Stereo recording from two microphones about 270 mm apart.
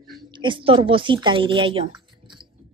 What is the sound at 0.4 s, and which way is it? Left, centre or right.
Speech, centre.